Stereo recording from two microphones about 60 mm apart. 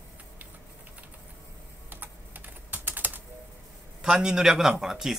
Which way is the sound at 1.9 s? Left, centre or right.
Right.